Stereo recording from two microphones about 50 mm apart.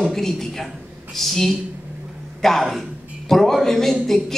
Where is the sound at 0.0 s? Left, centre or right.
Centre.